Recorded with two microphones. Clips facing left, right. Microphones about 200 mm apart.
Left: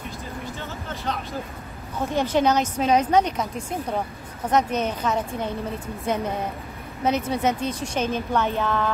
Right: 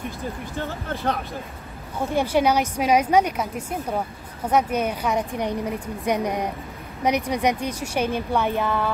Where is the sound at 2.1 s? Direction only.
10° right (ahead or behind).